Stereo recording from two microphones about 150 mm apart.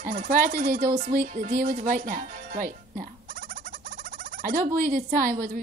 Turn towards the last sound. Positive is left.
turn(degrees=-65)  # may be behind; listen again after turning